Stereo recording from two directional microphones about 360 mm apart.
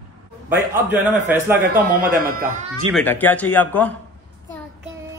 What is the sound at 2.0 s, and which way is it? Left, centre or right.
Speech, right.